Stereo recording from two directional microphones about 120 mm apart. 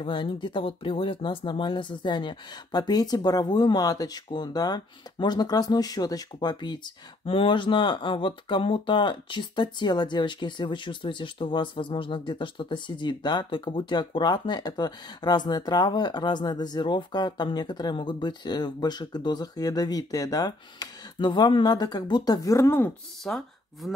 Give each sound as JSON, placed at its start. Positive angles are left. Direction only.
{"t": 0.0, "sound": "speech", "side_deg": 45}
{"t": 23.2, "sound": "speech", "side_deg": 5}